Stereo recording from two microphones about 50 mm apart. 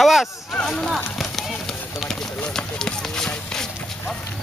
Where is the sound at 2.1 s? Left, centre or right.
Centre.